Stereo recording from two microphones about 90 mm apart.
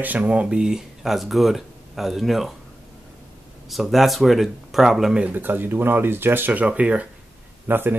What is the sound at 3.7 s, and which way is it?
Speech, centre (ahead or behind).